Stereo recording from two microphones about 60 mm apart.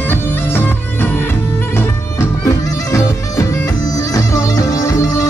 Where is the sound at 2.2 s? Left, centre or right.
Left.